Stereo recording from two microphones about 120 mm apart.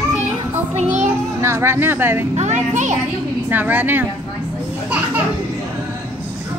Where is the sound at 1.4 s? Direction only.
20° right (ahead or behind).